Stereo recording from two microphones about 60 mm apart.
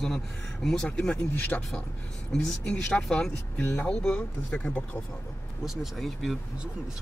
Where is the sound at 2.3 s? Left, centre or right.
Centre.